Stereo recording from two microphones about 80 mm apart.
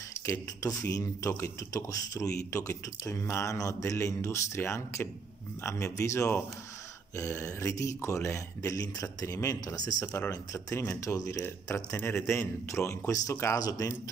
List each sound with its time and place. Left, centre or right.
0.3 s speech: left
13.6 s speech: left